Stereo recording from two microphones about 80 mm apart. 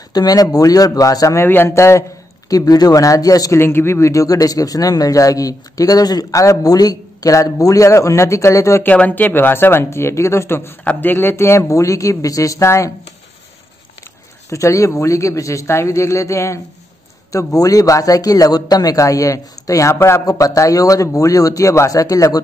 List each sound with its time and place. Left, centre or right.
0.1 s speech: left
1.5 s a man's voice: left
2.5 s speech: left
3.5 s speech: left
8.8 s speech: left
10.8 s a man's voice: left
14.5 s a man's voice: left
17.6 s speech: left
20.2 s speech: left